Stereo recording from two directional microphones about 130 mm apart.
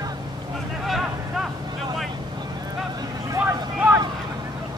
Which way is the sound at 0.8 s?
Centre (ahead or behind).